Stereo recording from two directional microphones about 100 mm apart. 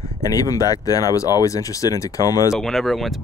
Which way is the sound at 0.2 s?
35° left (ahead or behind).